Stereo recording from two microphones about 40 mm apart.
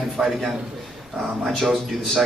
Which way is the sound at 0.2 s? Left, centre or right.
Centre.